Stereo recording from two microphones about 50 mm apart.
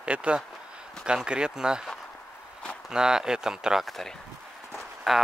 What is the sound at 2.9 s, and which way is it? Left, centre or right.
Speech, centre.